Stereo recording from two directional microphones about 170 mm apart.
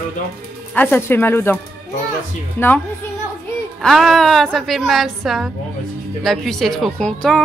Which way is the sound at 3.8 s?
Centre (ahead or behind).